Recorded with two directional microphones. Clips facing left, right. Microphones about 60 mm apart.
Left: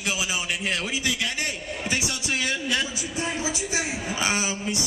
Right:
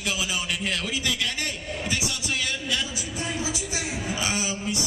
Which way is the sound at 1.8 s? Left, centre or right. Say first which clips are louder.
Left 2 dB; left.